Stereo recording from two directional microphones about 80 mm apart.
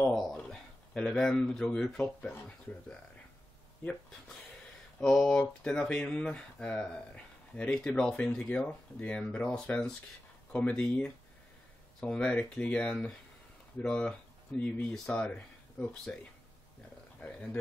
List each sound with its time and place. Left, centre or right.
0.1 s a sound: centre
0.5 s speech: centre
5.0 s speech: centre
17.2 s a man's voice: centre